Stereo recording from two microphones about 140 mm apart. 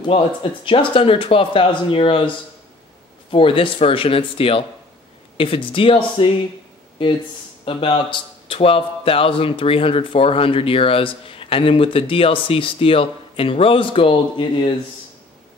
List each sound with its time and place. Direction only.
0.0 s a man's voice: 40° left (ahead or behind)
7.6 s a man's voice: 35° left (ahead or behind)